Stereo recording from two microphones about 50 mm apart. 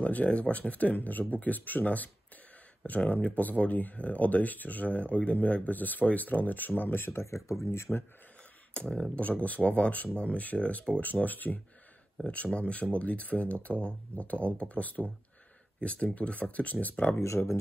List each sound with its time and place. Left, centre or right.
0.0 s speech: left
7.6 s speech: left
8.7 s speech: centre; by 11.6 s left
12.2 s speech: left